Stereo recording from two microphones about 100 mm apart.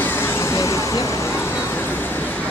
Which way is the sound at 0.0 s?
20° left (ahead or behind).